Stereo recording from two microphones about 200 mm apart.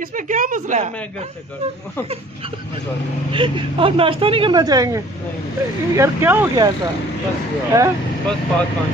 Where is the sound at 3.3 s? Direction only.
25° right (ahead or behind).